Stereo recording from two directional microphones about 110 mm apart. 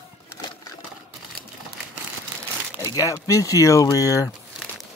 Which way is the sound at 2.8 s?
30° left (ahead or behind).